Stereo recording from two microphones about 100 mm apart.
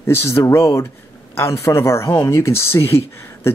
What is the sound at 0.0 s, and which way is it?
Speech, 25° left (ahead or behind).